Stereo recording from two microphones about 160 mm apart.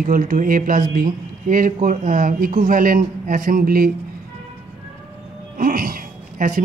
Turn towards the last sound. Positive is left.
turn(degrees=-55)  # may be behind; listen again after turning